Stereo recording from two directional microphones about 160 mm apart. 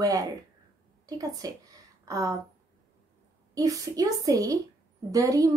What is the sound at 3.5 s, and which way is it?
Speech, 20° right (ahead or behind).